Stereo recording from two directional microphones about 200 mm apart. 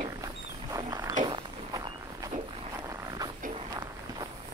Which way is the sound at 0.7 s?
20° right (ahead or behind).